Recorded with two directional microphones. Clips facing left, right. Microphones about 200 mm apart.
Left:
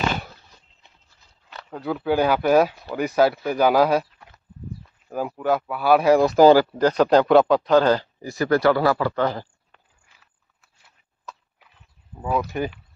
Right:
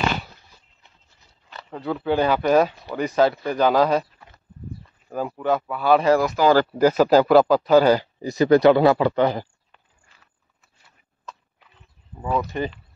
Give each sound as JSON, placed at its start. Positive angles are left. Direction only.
{"t": 1.5, "sound": "speech", "side_deg": 0}
{"t": 6.2, "sound": "speech", "side_deg": 35}
{"t": 6.7, "sound": "speech", "side_deg": -5}
{"t": 12.2, "sound": "speech", "side_deg": 5}